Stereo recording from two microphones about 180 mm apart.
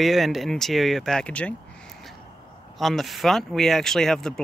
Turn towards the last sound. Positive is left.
turn(degrees=5)  # may be behind; listen again after turning